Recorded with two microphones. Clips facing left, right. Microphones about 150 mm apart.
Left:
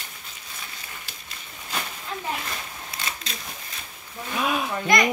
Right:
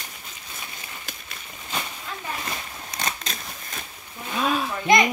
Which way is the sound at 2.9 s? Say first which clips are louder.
Right 5 dB; 45° right (ahead or behind).